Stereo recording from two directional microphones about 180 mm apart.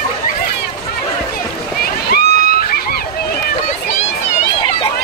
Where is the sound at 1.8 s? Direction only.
60° left (ahead or behind).